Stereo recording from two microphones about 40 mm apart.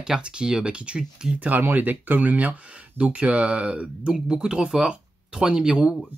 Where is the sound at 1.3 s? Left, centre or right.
Right.